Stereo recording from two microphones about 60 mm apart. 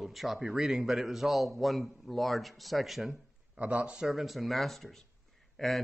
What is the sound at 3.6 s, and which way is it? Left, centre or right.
Speech, right.